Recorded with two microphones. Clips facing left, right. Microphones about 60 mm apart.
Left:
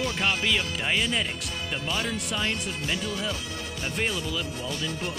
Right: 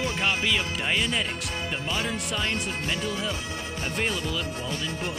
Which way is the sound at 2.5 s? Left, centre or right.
Right.